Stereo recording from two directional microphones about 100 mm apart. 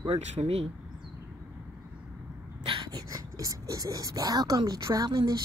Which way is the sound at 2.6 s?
55° right (ahead or behind).